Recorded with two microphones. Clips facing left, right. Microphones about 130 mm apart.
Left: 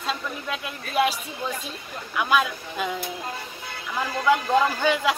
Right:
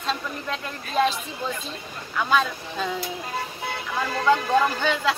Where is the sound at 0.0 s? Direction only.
5° left (ahead or behind).